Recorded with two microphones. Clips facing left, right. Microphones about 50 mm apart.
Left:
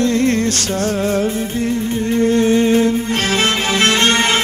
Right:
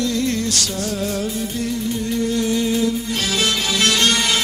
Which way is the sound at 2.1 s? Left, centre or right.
Left.